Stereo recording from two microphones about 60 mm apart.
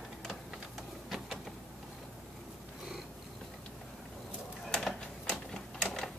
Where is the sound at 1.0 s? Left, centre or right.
Centre.